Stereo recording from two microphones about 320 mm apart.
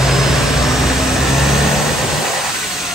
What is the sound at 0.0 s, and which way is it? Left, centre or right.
Vehicle, centre.